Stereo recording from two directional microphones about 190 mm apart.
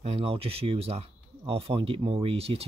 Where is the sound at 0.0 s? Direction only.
30° right (ahead or behind).